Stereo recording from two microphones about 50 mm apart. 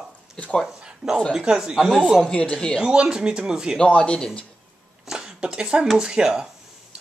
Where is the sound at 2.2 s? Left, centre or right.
Left.